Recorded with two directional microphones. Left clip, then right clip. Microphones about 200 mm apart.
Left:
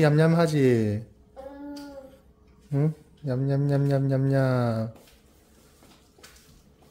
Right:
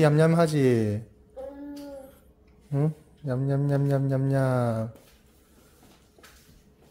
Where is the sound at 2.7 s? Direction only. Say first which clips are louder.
Left 1 dB; 15° left (ahead or behind).